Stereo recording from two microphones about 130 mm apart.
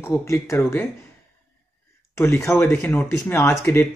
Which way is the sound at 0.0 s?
20° left (ahead or behind).